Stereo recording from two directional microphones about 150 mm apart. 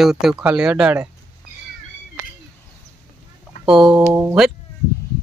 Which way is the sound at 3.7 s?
5° right (ahead or behind).